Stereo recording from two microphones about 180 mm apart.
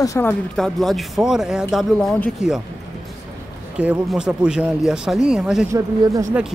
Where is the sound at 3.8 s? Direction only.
5° right (ahead or behind).